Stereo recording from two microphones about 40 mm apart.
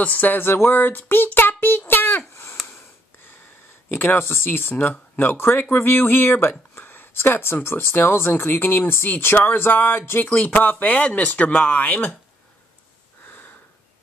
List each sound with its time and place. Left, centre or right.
0.0 s speech: left
1.9 s a sound: left
3.9 s speech: left
4.5 s speech: left
6.8 s a sound: left
7.2 s speech: left
10.5 s speech: left